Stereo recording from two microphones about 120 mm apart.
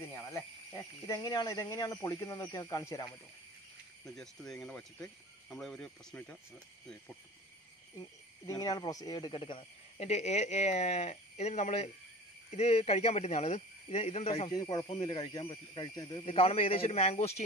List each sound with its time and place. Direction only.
1.0 s speech: 25° left (ahead or behind)
4.0 s speech: 5° left (ahead or behind)
6.1 s speech: 15° left (ahead or behind)
8.5 s speech: 30° left (ahead or behind)
9.9 s speech: 65° left (ahead or behind)
14.5 s speech: 35° left (ahead or behind)
16.3 s speech: 55° left (ahead or behind)